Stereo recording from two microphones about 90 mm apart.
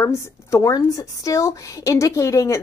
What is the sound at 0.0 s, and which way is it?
A woman's voice, 30° left (ahead or behind).